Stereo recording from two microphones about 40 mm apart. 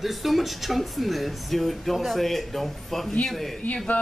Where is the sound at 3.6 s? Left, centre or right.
Left.